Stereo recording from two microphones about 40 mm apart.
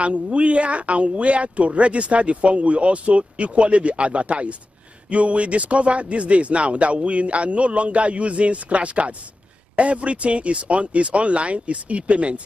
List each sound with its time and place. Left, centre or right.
0.0 s speech: right